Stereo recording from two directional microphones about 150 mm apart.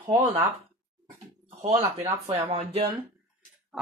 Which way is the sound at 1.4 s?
45° right (ahead or behind).